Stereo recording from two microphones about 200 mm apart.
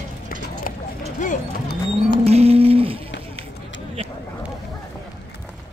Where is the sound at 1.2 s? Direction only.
45° left (ahead or behind).